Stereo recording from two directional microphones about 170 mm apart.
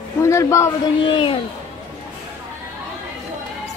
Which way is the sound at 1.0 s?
30° left (ahead or behind).